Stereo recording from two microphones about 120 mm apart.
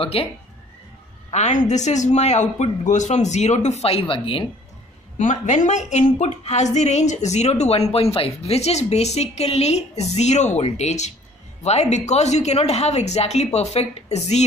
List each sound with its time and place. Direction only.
0.0 s speech: 50° left (ahead or behind)
1.3 s a woman's voice: 80° left; by 4.5 s 50° left (ahead or behind)
5.1 s a woman's voice: 90° left; by 14.4 s 65° left (ahead or behind)